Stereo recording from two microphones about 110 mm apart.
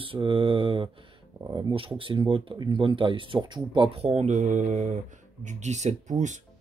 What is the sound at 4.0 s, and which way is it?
Speech, 75° right (ahead or behind).